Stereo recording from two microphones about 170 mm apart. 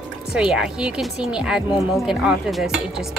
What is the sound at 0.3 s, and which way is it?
Speech, 5° right (ahead or behind).